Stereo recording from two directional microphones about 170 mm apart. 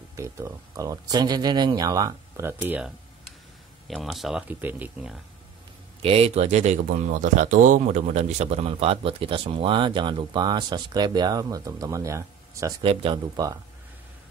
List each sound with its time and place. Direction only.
0.1 s speech: 15° right (ahead or behind)
3.8 s speech: centre (ahead or behind)
6.0 s speech: 35° right (ahead or behind); by 12.7 s 20° right (ahead or behind)
12.8 s speech: 30° right (ahead or behind)